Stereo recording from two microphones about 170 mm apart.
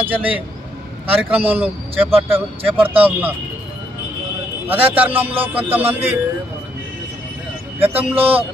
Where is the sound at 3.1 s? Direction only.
10° right (ahead or behind).